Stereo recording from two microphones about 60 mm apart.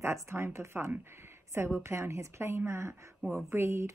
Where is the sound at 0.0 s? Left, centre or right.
Right.